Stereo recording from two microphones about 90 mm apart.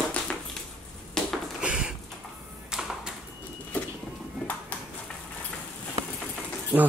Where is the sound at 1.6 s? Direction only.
15° right (ahead or behind).